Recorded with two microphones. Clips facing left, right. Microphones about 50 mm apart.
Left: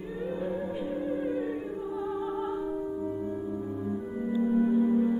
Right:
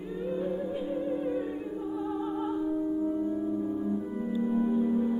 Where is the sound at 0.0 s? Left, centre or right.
Centre.